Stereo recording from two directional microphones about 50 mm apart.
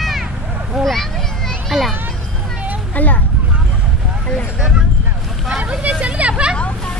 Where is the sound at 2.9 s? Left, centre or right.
Left.